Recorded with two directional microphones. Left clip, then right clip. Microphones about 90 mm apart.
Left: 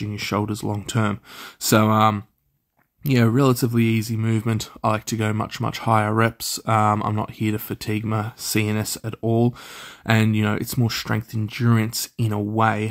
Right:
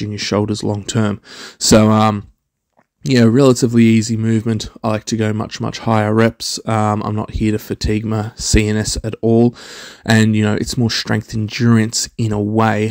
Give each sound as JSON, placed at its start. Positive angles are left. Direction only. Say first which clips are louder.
{"t": 0.0, "sound": "speech", "louder": "right 7 dB", "side_deg": -40}
{"t": 1.8, "sound": "speech", "louder": "right 2 dB", "side_deg": -65}
{"t": 3.0, "sound": "speech", "louder": "right 8 dB", "side_deg": -50}
{"t": 4.2, "sound": "speech", "louder": "right 6 dB", "side_deg": -35}
{"t": 5.9, "sound": "speech", "louder": "right 7 dB", "side_deg": -45}
{"t": 10.0, "sound": "speech", "louder": "right 6 dB", "side_deg": -75}
{"t": 10.3, "sound": "speech", "louder": "right 6 dB", "side_deg": -55}